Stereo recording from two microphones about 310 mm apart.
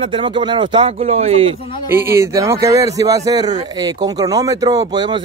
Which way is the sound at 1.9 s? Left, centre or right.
Centre.